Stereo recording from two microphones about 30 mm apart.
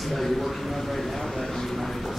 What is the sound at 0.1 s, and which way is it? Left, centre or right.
Speech, centre.